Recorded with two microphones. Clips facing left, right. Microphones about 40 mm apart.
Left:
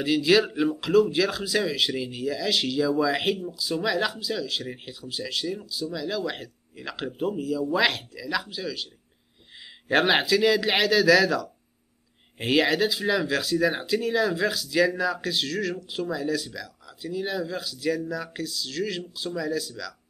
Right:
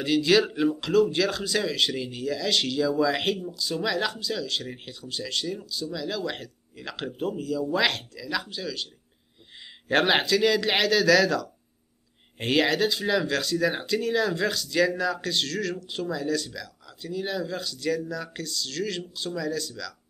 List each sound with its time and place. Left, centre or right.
0.0 s speech: centre
9.8 s speech: centre